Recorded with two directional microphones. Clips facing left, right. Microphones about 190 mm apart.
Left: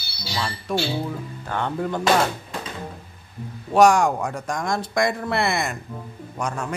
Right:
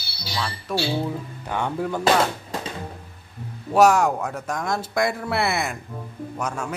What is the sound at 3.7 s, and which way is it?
Speech, 5° right (ahead or behind).